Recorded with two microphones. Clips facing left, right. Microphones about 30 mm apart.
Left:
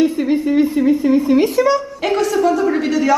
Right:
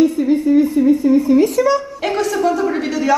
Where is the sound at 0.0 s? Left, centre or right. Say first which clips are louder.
Right 1 dB; left.